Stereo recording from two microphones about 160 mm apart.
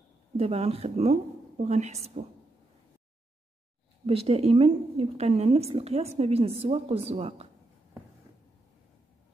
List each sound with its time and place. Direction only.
0.4 s speech: 35° right (ahead or behind)
4.0 s speech: 40° right (ahead or behind)